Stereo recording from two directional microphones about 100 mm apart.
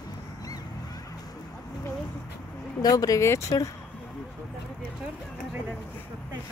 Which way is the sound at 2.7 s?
40° left (ahead or behind).